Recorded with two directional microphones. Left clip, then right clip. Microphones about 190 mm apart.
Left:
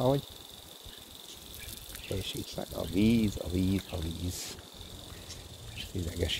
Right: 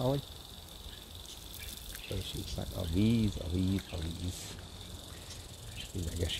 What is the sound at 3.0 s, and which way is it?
Speech, 35° left (ahead or behind).